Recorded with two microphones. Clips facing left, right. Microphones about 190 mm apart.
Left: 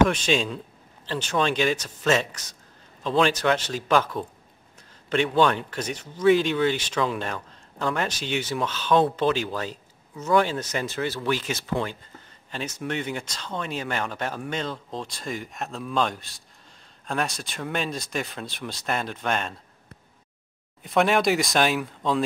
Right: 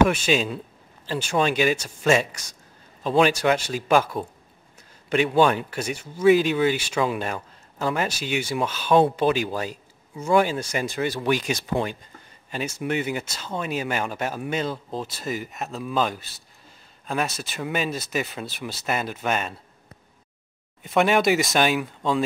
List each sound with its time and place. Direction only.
0.1 s speech: 5° right (ahead or behind)
20.8 s speech: centre (ahead or behind)